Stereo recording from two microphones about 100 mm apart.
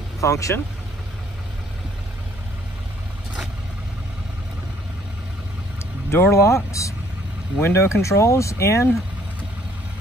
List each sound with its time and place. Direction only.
0.2 s speech: 30° left (ahead or behind)
6.0 s speech: 25° left (ahead or behind)